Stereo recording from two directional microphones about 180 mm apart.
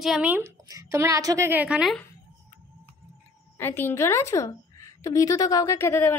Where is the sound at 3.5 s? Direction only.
15° left (ahead or behind).